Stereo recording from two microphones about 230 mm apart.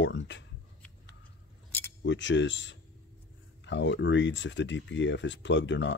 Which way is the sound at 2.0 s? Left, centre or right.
Left.